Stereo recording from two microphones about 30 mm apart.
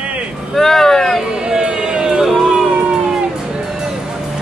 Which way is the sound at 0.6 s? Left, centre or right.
Centre.